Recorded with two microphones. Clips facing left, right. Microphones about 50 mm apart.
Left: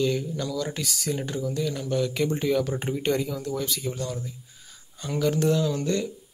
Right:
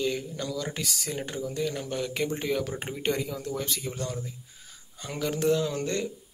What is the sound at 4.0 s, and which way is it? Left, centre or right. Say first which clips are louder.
Speech: left 2 dB; right.